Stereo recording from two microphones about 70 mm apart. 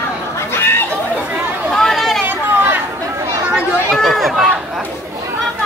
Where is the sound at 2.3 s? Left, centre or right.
Right.